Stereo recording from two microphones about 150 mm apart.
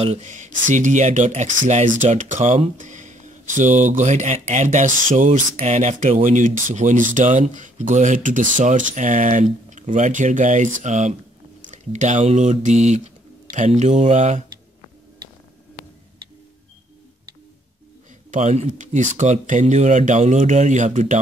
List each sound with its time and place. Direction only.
0.0 s speech: 45° right (ahead or behind)
18.3 s speech: 50° right (ahead or behind)